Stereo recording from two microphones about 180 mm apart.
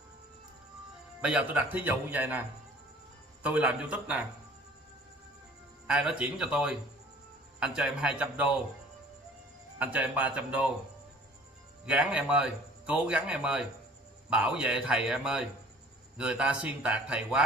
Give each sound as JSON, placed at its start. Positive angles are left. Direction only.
{"t": 1.2, "sound": "speech", "side_deg": -10}
{"t": 3.4, "sound": "speech", "side_deg": -5}
{"t": 5.9, "sound": "a man's voice", "side_deg": -5}
{"t": 9.8, "sound": "speech", "side_deg": -10}
{"t": 11.8, "sound": "a man's voice", "side_deg": -5}